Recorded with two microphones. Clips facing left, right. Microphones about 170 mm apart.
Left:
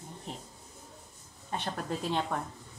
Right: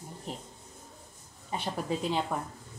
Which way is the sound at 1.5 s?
5° right (ahead or behind).